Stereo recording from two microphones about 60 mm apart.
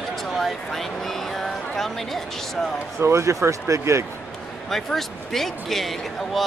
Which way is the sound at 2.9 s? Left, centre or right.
Right.